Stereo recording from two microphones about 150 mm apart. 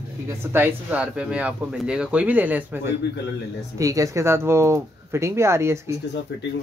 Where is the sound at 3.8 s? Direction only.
20° right (ahead or behind).